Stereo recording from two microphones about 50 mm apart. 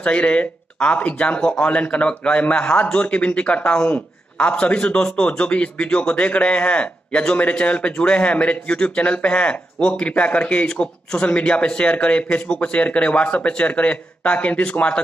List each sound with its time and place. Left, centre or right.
0.0 s speech: left